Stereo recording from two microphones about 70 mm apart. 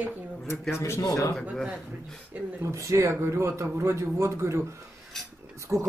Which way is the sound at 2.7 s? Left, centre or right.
Right.